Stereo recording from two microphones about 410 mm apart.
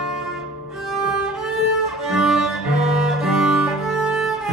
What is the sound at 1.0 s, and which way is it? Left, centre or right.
Violin, centre.